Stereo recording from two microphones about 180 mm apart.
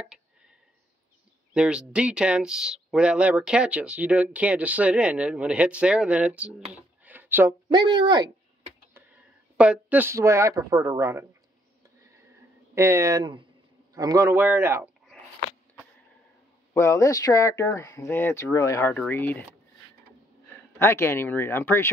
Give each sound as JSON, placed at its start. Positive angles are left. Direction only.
{"t": 1.5, "sound": "speech", "side_deg": -5}
{"t": 6.7, "sound": "a sound", "side_deg": -10}
{"t": 7.7, "sound": "speech", "side_deg": -25}
{"t": 8.9, "sound": "speech", "side_deg": -5}
{"t": 12.7, "sound": "a man's voice", "side_deg": -15}
{"t": 16.7, "sound": "speech", "side_deg": 15}
{"t": 20.8, "sound": "speech", "side_deg": 15}